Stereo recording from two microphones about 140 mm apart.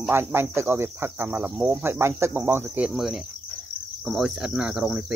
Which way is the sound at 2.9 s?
Centre (ahead or behind).